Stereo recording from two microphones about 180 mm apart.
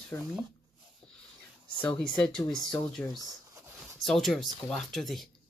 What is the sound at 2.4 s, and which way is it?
Speech, 20° left (ahead or behind).